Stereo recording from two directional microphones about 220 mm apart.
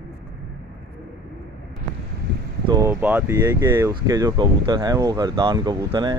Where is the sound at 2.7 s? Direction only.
10° right (ahead or behind).